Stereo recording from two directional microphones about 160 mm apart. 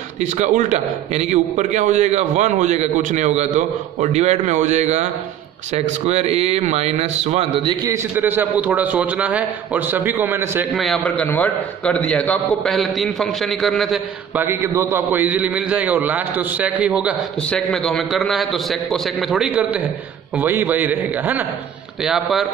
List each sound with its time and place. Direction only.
0.2 s a man's voice: 50° right (ahead or behind)
7.9 s a man's voice: 10° right (ahead or behind)
10.7 s a man's voice: 5° left (ahead or behind)
14.4 s a man's voice: 15° right (ahead or behind)
17.4 s a man's voice: 5° left (ahead or behind)